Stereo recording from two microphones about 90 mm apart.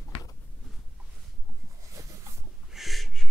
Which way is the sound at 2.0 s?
40° right (ahead or behind).